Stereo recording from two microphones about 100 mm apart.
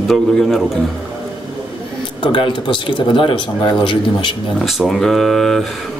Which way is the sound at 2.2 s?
55° left (ahead or behind).